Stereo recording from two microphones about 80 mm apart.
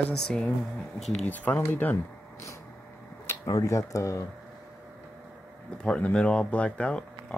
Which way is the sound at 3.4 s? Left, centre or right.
Left.